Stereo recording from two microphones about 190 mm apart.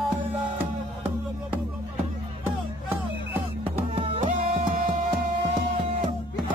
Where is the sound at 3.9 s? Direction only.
30° right (ahead or behind).